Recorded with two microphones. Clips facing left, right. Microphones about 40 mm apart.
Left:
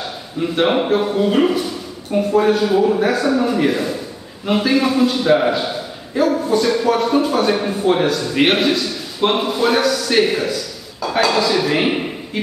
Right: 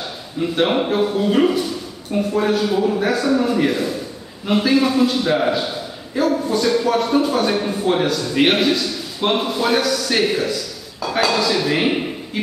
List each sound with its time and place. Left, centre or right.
0.4 s a man's voice: centre